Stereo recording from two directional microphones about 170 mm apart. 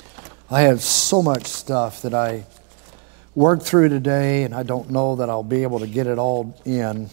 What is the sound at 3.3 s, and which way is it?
Speech, 20° right (ahead or behind).